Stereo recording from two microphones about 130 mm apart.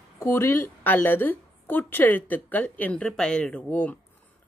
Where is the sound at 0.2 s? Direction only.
20° left (ahead or behind).